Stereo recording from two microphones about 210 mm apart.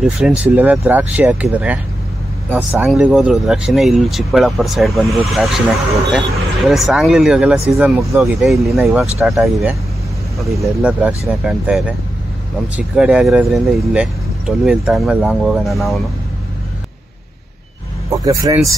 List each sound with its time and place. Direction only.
0.0 s speech: 5° right (ahead or behind)
18.1 s speech: 15° right (ahead or behind)